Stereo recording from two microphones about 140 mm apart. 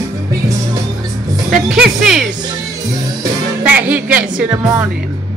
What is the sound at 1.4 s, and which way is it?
Speech, 5° right (ahead or behind).